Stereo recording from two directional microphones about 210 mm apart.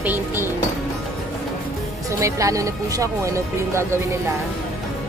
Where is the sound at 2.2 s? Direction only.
15° right (ahead or behind).